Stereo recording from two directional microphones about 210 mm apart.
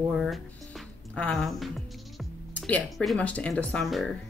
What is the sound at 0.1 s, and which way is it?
Music, centre (ahead or behind).